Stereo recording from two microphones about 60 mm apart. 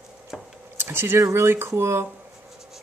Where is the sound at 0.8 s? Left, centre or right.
Right.